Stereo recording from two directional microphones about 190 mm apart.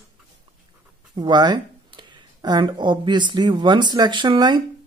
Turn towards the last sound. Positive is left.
turn(degrees=-25)  # may be behind; listen again after turning